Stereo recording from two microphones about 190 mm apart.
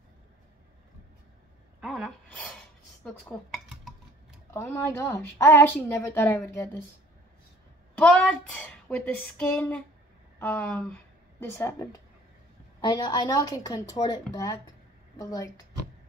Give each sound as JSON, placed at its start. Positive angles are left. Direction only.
{"t": 1.8, "sound": "gasp", "side_deg": 0}
{"t": 3.0, "sound": "dishes", "side_deg": 5}
{"t": 4.6, "sound": "a woman's voice", "side_deg": 15}
{"t": 8.0, "sound": "a woman's voice", "side_deg": 5}